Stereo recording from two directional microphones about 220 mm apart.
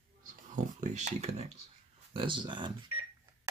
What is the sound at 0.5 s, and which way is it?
Speech, 35° right (ahead or behind).